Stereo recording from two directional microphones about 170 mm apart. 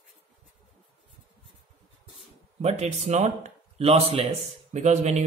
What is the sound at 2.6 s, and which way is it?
Speech, 40° right (ahead or behind).